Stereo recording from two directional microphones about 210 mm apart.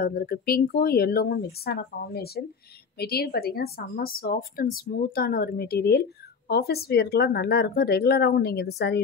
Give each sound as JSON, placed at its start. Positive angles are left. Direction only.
{"t": 0.0, "sound": "a woman's voice", "side_deg": 45}